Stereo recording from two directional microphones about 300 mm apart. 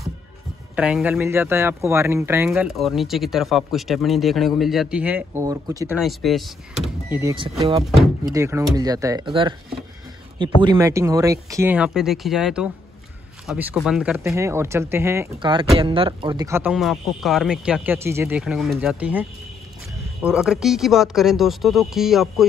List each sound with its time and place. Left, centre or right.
0.7 s speech: centre
10.6 s speech: centre